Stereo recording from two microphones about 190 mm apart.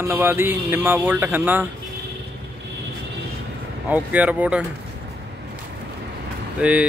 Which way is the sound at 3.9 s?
10° right (ahead or behind).